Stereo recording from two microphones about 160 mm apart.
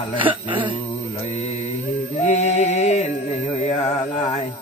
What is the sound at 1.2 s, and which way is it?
Mantra, 45° left (ahead or behind).